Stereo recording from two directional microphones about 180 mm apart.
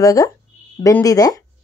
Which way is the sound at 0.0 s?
20° left (ahead or behind).